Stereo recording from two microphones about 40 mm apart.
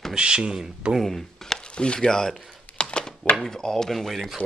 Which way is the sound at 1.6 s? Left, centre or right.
Left.